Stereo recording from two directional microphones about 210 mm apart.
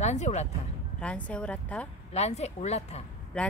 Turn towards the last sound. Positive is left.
turn(degrees=5)  # may be behind; listen again after turning